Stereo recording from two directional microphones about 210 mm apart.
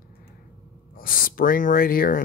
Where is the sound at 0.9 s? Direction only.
45° left (ahead or behind).